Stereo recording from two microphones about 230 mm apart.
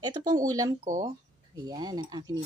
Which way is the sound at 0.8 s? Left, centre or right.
Right.